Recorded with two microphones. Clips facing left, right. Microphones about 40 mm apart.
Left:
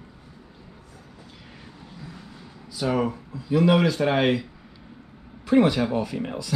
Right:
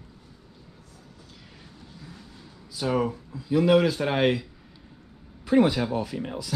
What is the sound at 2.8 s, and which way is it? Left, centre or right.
Speech, centre.